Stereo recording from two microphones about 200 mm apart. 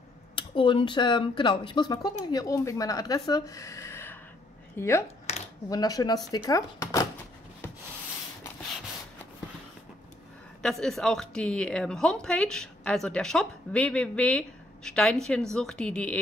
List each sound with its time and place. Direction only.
0.4 s speech: 25° left (ahead or behind)
10.6 s a woman's voice: centre (ahead or behind)